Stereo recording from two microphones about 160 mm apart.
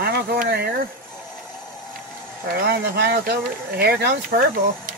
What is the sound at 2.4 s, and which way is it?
Speech, 80° right.